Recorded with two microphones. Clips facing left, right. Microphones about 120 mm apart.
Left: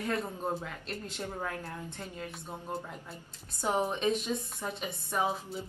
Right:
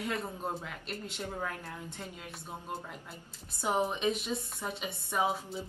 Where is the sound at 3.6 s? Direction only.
10° right (ahead or behind).